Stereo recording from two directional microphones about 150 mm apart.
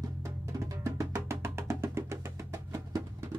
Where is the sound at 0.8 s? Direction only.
20° right (ahead or behind).